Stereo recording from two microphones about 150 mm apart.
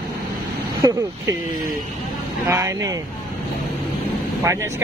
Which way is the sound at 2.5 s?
20° right (ahead or behind).